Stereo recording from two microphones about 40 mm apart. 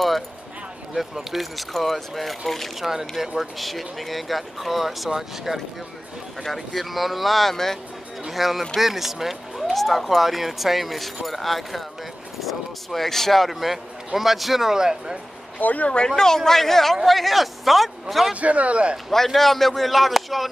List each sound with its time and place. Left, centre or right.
0.9 s speech: centre
2.9 s speech: centre
6.4 s speech: centre
8.3 s speech: centre
14.7 s speech: centre
15.6 s speech: left
16.2 s speech: centre
18.3 s a man's voice: right
19.0 s speech: centre